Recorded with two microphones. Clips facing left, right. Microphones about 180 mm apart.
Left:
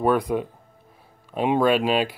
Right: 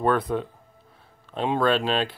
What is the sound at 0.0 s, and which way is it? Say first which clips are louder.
Speech: left 2 dB; 15° left (ahead or behind).